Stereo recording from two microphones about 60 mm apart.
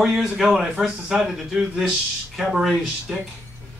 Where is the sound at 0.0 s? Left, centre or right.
Centre.